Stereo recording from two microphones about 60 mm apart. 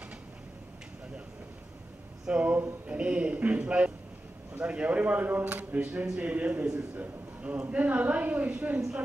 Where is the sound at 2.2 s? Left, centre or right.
Right.